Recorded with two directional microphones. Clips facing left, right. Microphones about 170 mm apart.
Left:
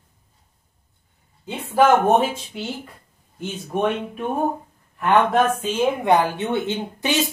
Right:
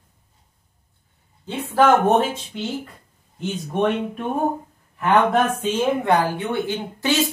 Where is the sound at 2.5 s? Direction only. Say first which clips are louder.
Right 2 dB; 5° left (ahead or behind).